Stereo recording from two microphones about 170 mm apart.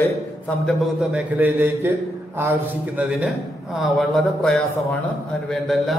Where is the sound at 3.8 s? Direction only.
Centre (ahead or behind).